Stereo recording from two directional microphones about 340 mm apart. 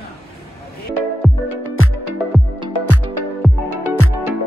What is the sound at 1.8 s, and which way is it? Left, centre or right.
Music, left.